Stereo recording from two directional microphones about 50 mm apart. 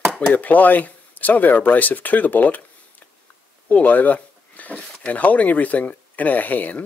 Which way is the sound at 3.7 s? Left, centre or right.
Left.